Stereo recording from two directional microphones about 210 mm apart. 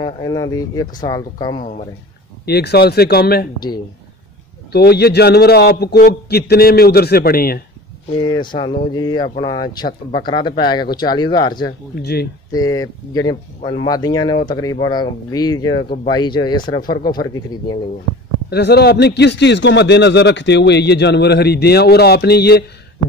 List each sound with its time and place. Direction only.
0.0 s speech: 20° left (ahead or behind)
1.6 s speech: 35° left (ahead or behind)
2.4 s a man's voice: 50° left (ahead or behind)
4.7 s a man's voice: 50° left (ahead or behind)
8.2 s speech: 20° left (ahead or behind)
12.0 s a man's voice: 50° left (ahead or behind)
12.5 s speech: 15° left (ahead or behind)
18.5 s a man's voice: 50° left (ahead or behind)